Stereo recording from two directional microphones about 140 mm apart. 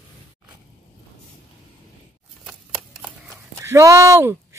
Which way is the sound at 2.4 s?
5° right (ahead or behind).